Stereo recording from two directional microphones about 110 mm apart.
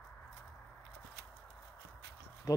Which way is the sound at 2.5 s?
30° left (ahead or behind).